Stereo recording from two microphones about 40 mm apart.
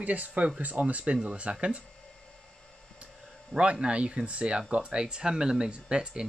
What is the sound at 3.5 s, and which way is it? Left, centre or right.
Speech, right.